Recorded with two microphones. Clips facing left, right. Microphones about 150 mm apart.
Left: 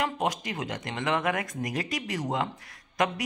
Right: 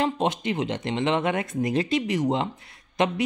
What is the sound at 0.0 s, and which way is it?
Speech, 25° right (ahead or behind).